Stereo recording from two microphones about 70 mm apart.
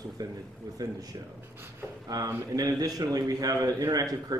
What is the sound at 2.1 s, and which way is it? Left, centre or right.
Speech, right.